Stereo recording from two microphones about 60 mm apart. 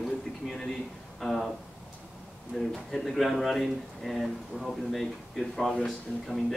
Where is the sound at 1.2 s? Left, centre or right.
Centre.